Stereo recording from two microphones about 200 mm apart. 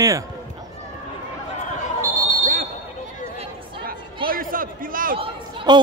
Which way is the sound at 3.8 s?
45° right (ahead or behind).